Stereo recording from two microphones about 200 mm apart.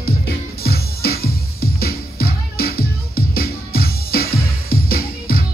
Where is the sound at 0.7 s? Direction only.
50° left (ahead or behind).